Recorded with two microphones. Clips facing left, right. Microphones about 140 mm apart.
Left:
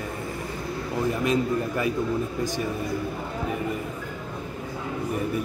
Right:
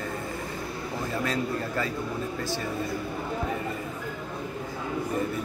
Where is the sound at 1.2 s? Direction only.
20° left (ahead or behind).